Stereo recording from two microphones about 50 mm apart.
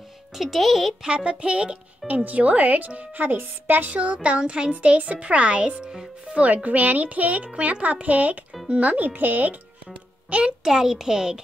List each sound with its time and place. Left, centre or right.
0.4 s speech: centre
1.0 s a child's voice: centre; by 3.9 s right
3.9 s a child's voice: right
10.6 s speech: centre